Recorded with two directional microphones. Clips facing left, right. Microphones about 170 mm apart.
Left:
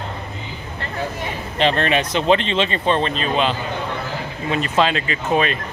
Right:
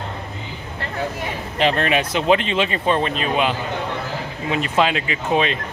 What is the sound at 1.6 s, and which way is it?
Speech, 5° right (ahead or behind).